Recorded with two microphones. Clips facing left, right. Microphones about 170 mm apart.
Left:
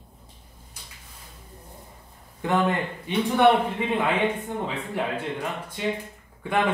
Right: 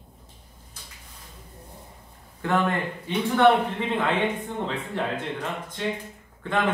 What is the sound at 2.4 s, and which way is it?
Speech, 15° left (ahead or behind).